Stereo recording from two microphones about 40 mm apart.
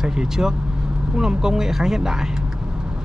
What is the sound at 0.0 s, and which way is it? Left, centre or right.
Speech, centre.